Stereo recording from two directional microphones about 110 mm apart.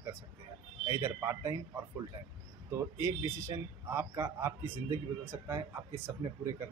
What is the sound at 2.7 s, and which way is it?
A man's voice, 25° right (ahead or behind).